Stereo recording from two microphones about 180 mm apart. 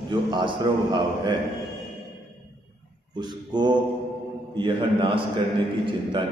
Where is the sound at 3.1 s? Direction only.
25° right (ahead or behind).